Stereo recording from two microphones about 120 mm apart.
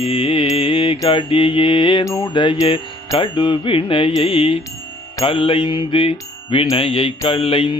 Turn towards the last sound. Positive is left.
turn(degrees=50)  # may be behind; listen again after turning